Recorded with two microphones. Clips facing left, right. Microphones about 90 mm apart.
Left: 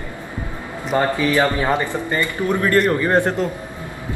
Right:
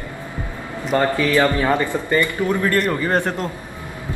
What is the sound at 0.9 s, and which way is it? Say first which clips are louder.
A man's voice: even; 20° left (ahead or behind).